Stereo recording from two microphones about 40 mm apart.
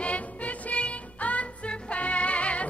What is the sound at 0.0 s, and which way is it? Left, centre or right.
Music, left.